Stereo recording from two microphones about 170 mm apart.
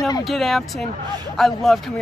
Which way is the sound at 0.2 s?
Centre (ahead or behind).